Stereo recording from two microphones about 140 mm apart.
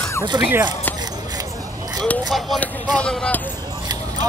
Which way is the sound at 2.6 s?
10° left (ahead or behind).